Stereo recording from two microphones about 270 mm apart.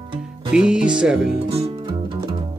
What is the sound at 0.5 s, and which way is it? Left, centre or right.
Speech, centre.